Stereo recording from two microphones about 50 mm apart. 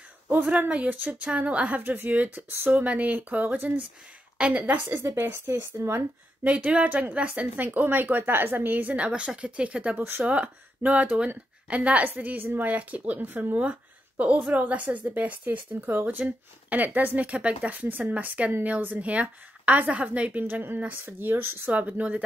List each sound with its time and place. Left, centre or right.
0.5 s a woman's voice: right
1.8 s a woman's voice: right
4.8 s speech: right
6.4 s a woman's voice: right
7.6 s a woman's voice: right
17.3 s a woman's voice: right
17.7 s a woman's voice: right
20.4 s speech: right
21.6 s a woman's voice: right